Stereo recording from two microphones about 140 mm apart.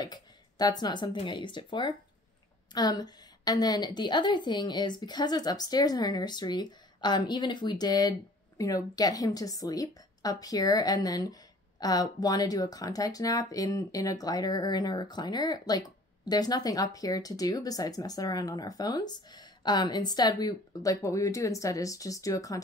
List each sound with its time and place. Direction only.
0.0 s a woman's voice: 30° left (ahead or behind)